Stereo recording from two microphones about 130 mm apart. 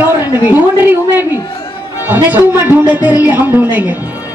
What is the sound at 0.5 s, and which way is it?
Speech, 15° right (ahead or behind).